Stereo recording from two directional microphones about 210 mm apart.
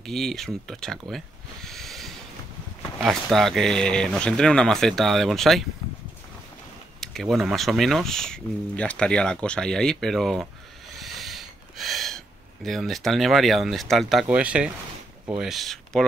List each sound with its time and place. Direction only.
0.0 s speech: centre (ahead or behind)
7.0 s speech: centre (ahead or behind)
11.0 s a sound: centre (ahead or behind)
12.6 s speech: centre (ahead or behind)